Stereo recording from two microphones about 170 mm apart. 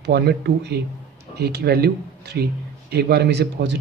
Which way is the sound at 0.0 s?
75° right (ahead or behind).